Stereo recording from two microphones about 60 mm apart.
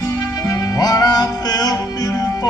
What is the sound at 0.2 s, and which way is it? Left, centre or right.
Music, left.